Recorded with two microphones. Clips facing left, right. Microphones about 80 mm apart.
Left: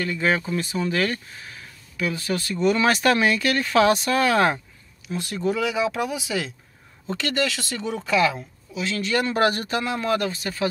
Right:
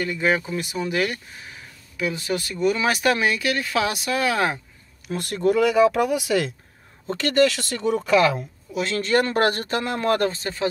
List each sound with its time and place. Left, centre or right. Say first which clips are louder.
0.0 s speech: right 1 dB; centre
5.0 s speech: right 4 dB; right
7.1 s speech: right 6 dB; right
8.7 s speech: right 3 dB; right